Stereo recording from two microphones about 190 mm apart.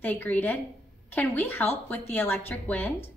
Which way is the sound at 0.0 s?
10° left (ahead or behind).